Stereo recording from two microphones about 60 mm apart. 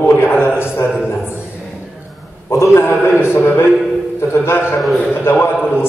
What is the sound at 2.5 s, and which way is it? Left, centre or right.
Speech, left.